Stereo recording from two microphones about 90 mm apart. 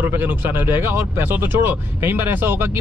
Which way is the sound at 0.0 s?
20° right (ahead or behind).